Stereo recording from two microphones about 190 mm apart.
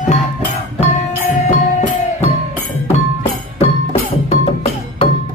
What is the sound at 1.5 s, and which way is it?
Music, 35° left (ahead or behind).